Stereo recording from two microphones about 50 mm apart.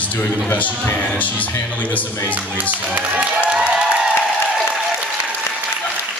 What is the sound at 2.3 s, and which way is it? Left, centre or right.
Speech, right.